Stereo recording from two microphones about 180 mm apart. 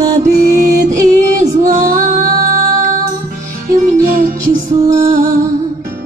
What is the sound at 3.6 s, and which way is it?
Music, 50° right (ahead or behind).